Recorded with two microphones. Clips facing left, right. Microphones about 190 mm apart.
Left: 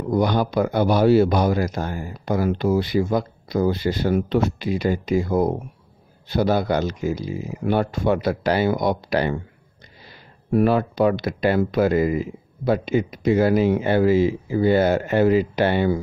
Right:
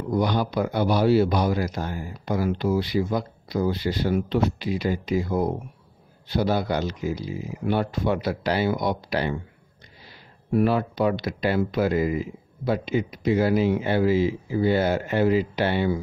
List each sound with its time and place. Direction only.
0.1 s speech: 50° left (ahead or behind)
10.5 s speech: 50° left (ahead or behind)